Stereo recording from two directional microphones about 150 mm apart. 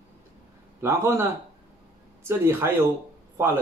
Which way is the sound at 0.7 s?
15° right (ahead or behind).